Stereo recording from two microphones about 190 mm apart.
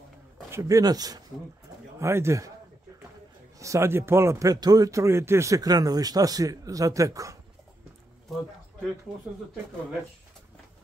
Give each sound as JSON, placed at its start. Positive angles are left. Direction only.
{"t": 0.5, "sound": "a man's voice", "side_deg": -15}
{"t": 3.5, "sound": "a man's voice", "side_deg": -15}